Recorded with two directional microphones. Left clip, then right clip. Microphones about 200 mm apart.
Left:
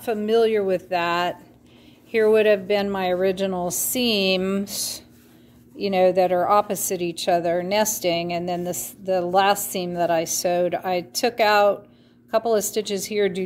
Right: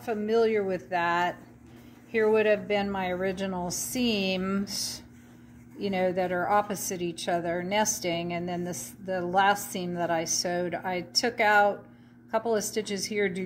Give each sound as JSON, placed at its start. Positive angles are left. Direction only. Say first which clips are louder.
{"t": 0.0, "sound": "a woman's voice", "louder": "left 6 dB", "side_deg": 55}